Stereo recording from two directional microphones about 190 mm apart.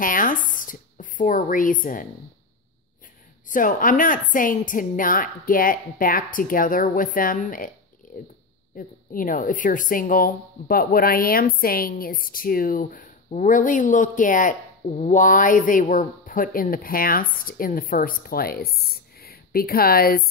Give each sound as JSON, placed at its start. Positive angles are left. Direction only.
{"t": 0.0, "sound": "speech", "side_deg": 45}
{"t": 3.4, "sound": "speech", "side_deg": 45}
{"t": 8.1, "sound": "a sound", "side_deg": 40}
{"t": 8.7, "sound": "speech", "side_deg": 45}